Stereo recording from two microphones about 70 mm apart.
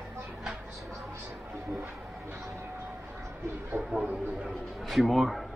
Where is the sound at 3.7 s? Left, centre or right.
Centre.